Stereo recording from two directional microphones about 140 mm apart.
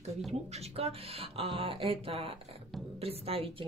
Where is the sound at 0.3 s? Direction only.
50° right (ahead or behind).